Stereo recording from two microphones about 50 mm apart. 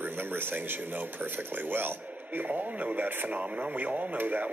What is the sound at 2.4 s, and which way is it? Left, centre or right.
Speech, right.